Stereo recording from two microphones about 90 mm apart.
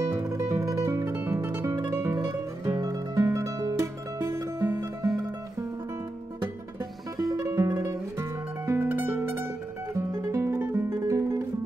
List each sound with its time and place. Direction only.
0.0 s music: 35° right (ahead or behind)
1.7 s music: 40° right (ahead or behind)
7.3 s music: 35° right (ahead or behind)